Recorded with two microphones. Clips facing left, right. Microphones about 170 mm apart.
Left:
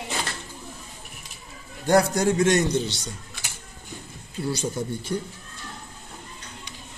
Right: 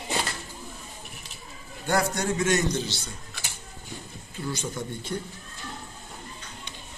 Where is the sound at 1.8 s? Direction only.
35° left (ahead or behind).